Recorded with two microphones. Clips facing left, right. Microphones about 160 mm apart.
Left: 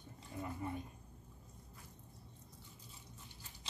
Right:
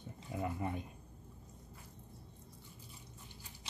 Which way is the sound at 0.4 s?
85° right.